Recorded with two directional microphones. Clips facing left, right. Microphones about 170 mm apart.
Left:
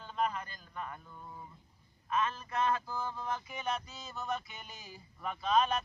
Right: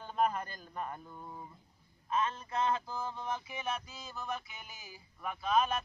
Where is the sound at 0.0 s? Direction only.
45° right (ahead or behind).